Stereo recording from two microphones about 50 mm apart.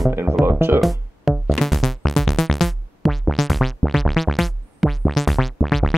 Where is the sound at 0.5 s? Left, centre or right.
Right.